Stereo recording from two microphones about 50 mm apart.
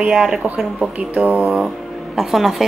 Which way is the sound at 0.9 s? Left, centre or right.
Right.